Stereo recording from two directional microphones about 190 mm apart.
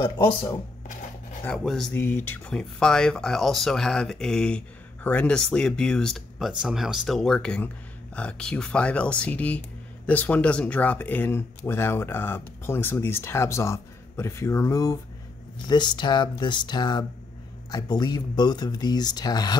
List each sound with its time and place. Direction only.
0.0 s speech: 15° left (ahead or behind)
1.4 s speech: 5° left (ahead or behind); by 19.6 s 20° left (ahead or behind)